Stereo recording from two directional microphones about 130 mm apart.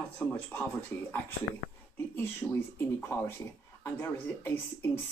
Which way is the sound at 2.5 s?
20° left (ahead or behind).